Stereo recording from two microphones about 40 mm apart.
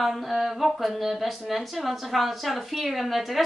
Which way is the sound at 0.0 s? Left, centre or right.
Centre.